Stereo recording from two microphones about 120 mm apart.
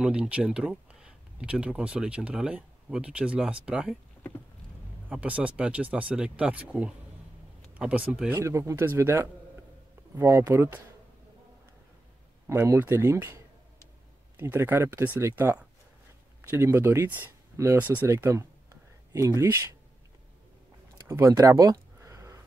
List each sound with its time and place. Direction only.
0.0 s speech: 10° right (ahead or behind)
5.1 s speech: 10° right (ahead or behind)
8.4 s speech: 25° right (ahead or behind)
12.4 s speech: 20° right (ahead or behind)
21.1 s a sound: 25° right (ahead or behind)